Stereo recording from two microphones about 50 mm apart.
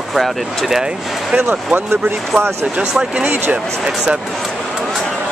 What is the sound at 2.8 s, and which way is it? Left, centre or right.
Speech, centre.